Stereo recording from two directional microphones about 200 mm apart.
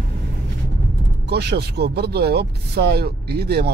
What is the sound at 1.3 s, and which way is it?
Speech, 55° right (ahead or behind).